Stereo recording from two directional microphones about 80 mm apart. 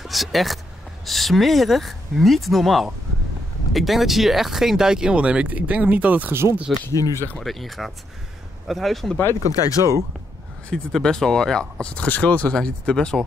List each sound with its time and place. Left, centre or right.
0.0 s speech: centre
6.9 s speech: left
7.3 s speech: centre
9.5 s speech: left
10.7 s speech: centre